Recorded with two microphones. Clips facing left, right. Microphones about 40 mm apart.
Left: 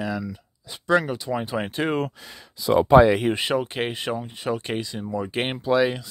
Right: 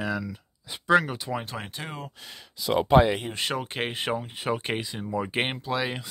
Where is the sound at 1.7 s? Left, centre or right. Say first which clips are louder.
Left 13 dB; left.